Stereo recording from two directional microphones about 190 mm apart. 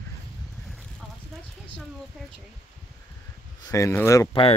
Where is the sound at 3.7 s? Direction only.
15° left (ahead or behind).